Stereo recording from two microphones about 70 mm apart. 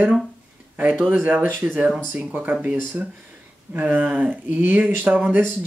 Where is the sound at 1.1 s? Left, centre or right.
Right.